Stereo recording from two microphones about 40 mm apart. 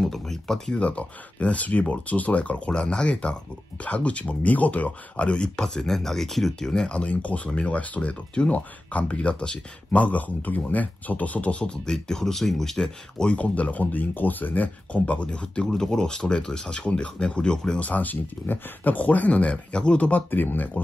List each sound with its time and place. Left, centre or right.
0.0 s speech: centre
0.7 s speech: left
5.6 s speech: centre
6.9 s speech: left
10.0 s speech: left; by 13.3 s centre
13.3 s speech: left
14.9 s speech: left
15.7 s speech: centre
17.7 s speech: left
20.1 s speech: left